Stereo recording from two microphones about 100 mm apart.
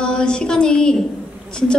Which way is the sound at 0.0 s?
10° left (ahead or behind).